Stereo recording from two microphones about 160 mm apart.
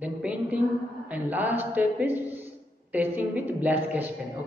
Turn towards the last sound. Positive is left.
turn(degrees=-10)  # may be behind; listen again after turning